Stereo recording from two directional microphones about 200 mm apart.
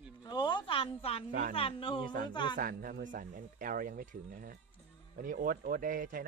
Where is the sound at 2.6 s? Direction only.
45° right (ahead or behind).